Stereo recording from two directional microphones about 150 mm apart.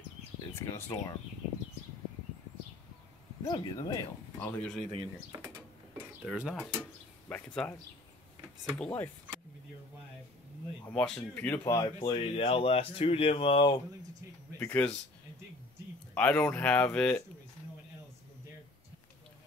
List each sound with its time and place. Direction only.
0.6 s speech: 20° left (ahead or behind)
3.4 s speech: 25° left (ahead or behind)
4.4 s speech: 10° left (ahead or behind)
6.3 s speech: 5° right (ahead or behind)
6.8 s speech: 10° left (ahead or behind)
8.7 s speech: 10° left (ahead or behind)
10.9 s speech: 10° left (ahead or behind)
11.6 s speech: 20° left (ahead or behind)
12.0 s speech: 35° left (ahead or behind)
14.6 s speech: 10° left (ahead or behind)
16.2 s speech: 10° left (ahead or behind)